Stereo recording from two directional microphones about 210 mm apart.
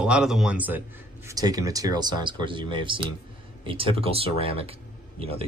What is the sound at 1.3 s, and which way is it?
Speech, 15° right (ahead or behind).